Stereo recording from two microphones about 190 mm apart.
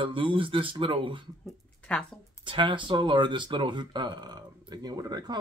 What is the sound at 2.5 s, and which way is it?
Speech, 25° right (ahead or behind).